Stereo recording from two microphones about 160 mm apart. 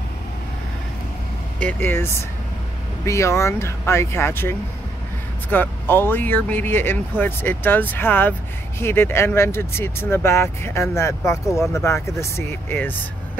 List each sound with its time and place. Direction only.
1.6 s speech: 10° left (ahead or behind)